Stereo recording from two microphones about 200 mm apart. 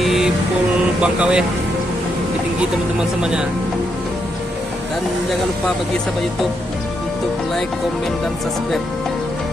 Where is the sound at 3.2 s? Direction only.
5° right (ahead or behind).